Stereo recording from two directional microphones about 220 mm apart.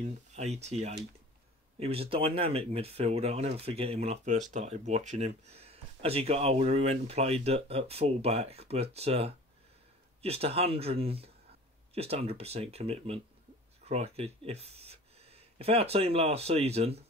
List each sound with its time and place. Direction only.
0.0 s speech: 30° right (ahead or behind)